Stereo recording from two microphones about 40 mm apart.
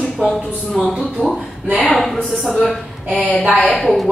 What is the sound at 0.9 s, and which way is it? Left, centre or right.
Speech, centre.